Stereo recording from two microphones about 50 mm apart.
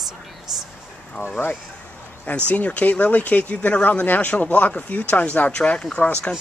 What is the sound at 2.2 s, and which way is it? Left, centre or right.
Speech, left.